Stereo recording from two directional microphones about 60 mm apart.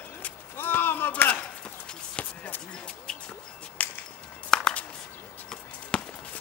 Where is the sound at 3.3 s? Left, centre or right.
Left.